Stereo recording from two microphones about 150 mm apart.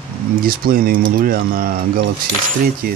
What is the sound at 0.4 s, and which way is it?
Speech, 75° right (ahead or behind).